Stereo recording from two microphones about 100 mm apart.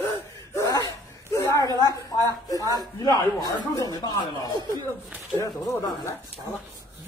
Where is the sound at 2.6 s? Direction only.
40° right (ahead or behind).